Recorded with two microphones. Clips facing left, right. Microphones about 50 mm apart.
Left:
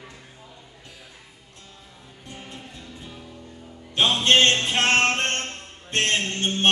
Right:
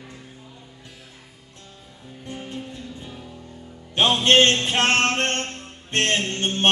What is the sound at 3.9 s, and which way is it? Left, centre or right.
Music, right.